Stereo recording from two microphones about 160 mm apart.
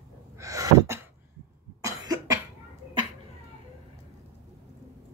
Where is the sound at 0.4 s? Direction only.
20° right (ahead or behind).